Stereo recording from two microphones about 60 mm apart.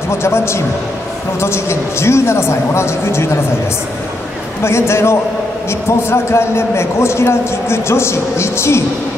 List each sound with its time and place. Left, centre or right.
0.2 s a man's voice: left
4.6 s a man's voice: left